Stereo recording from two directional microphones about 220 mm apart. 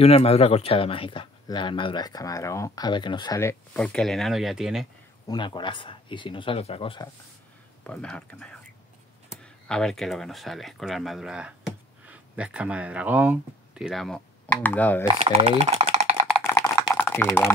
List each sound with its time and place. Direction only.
0.0 s speech: 25° left (ahead or behind); by 4.8 s centre (ahead or behind)
5.3 s speech: 20° left (ahead or behind)
7.8 s speech: 5° left (ahead or behind)
15.1 s speech: 30° right (ahead or behind)
16.9 s a sound: 5° left (ahead or behind)